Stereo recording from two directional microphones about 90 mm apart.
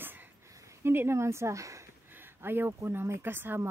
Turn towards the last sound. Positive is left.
turn(degrees=-25)  # may be behind; listen again after turning